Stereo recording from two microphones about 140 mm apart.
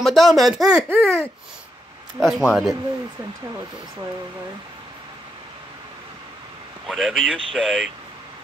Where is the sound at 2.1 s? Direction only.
Centre (ahead or behind).